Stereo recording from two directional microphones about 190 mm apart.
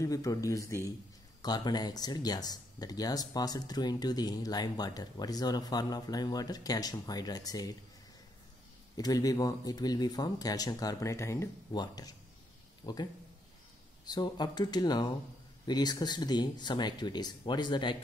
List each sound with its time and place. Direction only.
0.0 s speech: 15° left (ahead or behind)
8.9 s speech: 20° left (ahead or behind)